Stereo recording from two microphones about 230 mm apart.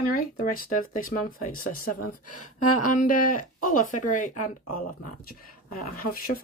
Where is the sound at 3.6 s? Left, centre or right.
Left.